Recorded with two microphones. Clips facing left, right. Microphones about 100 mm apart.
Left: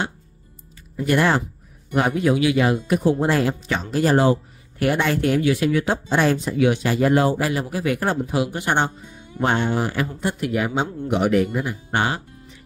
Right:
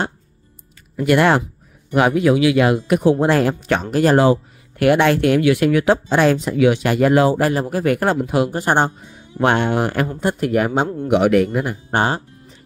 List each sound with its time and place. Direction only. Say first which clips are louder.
0.9 s speech: right 4 dB; 70° right (ahead or behind)
2.0 s speech: right 4 dB; 90° right
7.3 s speech: right 5 dB; 50° right (ahead or behind); by 8.5 s 70° right (ahead or behind)
8.5 s speech: right 4 dB; 40° right (ahead or behind)
9.4 s speech: right 4 dB; 65° right (ahead or behind)
11.1 s speech: right 5 dB; 80° right; by 11.8 s 60° right (ahead or behind)
11.9 s speech: right 4 dB; 35° right (ahead or behind)